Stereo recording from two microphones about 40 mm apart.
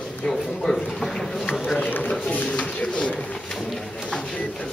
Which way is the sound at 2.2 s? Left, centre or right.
Left.